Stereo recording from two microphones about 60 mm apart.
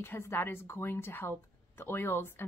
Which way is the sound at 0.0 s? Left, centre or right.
Left.